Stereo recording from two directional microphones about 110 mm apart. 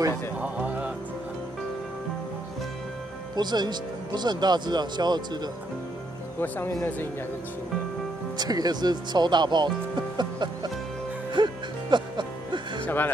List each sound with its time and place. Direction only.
0.4 s music: 10° right (ahead or behind)
3.3 s speech: 40° right (ahead or behind)
6.4 s speech: 15° left (ahead or behind)
8.4 s speech: 35° right (ahead or behind)
10.1 s music: 40° right (ahead or behind)
12.8 s music: 15° left (ahead or behind)